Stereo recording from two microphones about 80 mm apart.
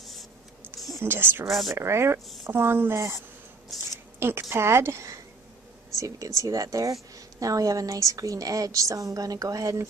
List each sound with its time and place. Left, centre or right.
0.9 s speech: right
1.5 s speech: centre
1.8 s a woman's voice: right
3.7 s speech: centre
4.2 s a woman's voice: right